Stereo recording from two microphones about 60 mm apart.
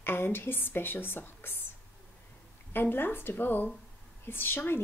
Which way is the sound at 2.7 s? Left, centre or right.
Left.